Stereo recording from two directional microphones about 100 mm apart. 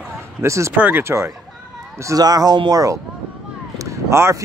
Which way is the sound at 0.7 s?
20° right (ahead or behind).